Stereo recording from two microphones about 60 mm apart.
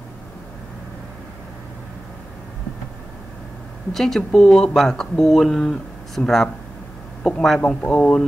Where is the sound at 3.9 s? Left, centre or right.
Centre.